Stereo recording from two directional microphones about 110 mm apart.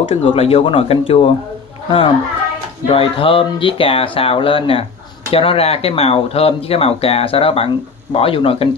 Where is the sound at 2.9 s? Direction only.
55° left (ahead or behind).